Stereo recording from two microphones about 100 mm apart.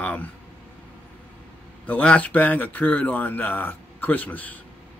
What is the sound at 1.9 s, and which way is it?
Speech, 15° left (ahead or behind).